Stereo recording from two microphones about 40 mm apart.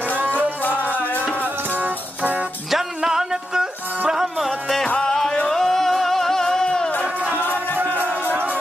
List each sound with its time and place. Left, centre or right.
1.7 s music: right
2.7 s a sound: centre
4.1 s music: centre
4.8 s music: left
7.9 s music: left